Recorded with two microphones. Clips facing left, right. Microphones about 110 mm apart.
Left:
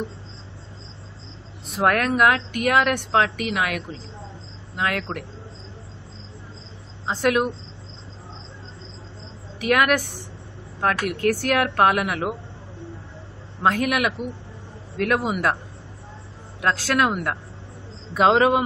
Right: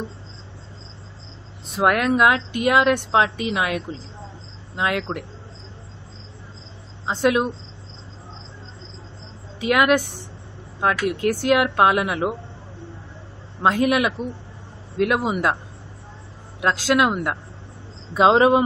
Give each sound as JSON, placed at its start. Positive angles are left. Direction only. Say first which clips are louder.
{"t": 1.7, "sound": "a woman's voice", "louder": "right 2 dB", "side_deg": -20}
{"t": 7.1, "sound": "a woman's voice", "louder": "right 1 dB", "side_deg": -25}
{"t": 9.6, "sound": "a woman's voice", "louder": "right 2 dB", "side_deg": -20}
{"t": 11.1, "sound": "a woman's voice", "louder": "right 2 dB", "side_deg": -20}
{"t": 13.6, "sound": "a woman's voice", "louder": "right 2 dB", "side_deg": -20}
{"t": 16.6, "sound": "a woman's voice", "louder": "right 2 dB", "side_deg": -20}